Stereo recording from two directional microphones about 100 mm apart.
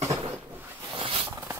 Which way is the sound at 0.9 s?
60° right (ahead or behind).